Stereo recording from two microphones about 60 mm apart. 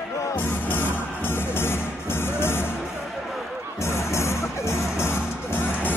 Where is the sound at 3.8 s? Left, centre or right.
Left.